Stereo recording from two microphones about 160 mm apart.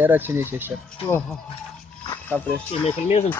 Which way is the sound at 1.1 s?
5° left (ahead or behind).